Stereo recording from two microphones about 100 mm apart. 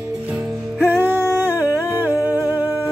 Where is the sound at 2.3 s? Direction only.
35° left (ahead or behind).